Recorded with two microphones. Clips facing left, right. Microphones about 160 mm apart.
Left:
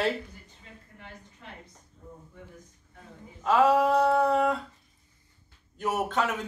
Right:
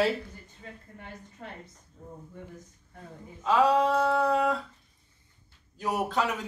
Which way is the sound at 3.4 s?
5° left (ahead or behind).